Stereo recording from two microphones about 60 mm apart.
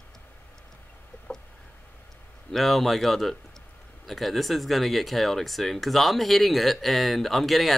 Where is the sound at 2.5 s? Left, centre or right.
Centre.